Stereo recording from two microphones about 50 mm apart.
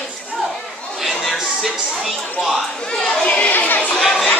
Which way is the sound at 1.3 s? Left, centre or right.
Centre.